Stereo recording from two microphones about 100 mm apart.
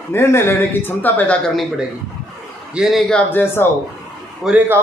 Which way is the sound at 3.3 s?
20° left (ahead or behind).